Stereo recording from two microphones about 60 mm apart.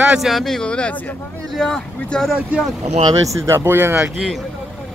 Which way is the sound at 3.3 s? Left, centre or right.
Right.